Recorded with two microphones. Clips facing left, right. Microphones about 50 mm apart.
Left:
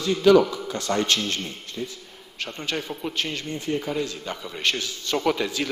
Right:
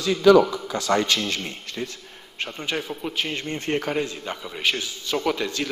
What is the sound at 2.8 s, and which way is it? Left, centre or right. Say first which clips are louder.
Speech: right 1 dB; centre.